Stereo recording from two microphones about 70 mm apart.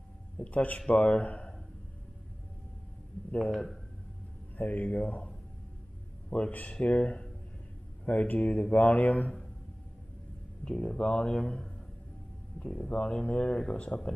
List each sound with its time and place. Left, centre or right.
0.4 s speech: left
4.6 s speech: left
6.5 s speech: centre
10.6 s speech: centre